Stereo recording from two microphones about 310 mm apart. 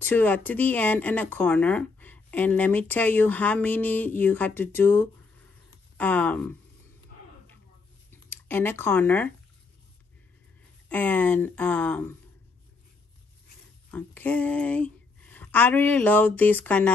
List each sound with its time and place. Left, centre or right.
0.0 s speech: centre
8.1 s speech: centre
10.9 s speech: centre
13.8 s speech: centre